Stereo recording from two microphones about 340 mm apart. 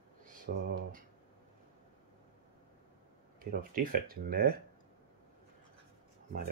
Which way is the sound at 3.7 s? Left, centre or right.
Right.